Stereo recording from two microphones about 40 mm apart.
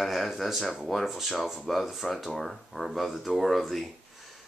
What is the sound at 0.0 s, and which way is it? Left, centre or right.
Speech, centre.